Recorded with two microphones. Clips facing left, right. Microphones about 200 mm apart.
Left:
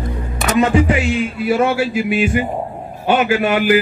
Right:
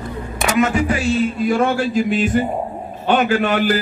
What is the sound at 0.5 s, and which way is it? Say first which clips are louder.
Speech: left 4 dB; 35° left (ahead or behind).